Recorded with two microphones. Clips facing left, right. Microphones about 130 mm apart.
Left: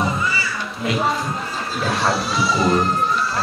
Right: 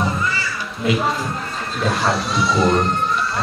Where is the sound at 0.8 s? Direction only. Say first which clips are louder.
Right 1 dB; centre (ahead or behind).